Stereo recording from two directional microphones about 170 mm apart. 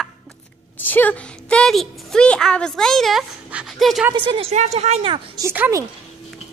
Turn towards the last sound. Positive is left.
turn(degrees=-15)  # may be behind; listen again after turning